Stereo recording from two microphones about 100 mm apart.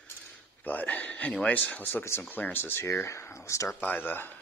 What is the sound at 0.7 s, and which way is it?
Speech, 15° left (ahead or behind).